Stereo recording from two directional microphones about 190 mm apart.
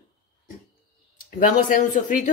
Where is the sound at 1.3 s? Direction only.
45° left (ahead or behind).